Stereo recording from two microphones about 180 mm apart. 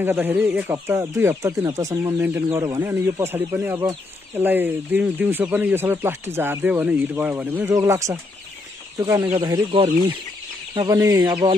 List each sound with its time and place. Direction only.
0.0 s speech: 10° right (ahead or behind)
9.4 s speech: 30° right (ahead or behind)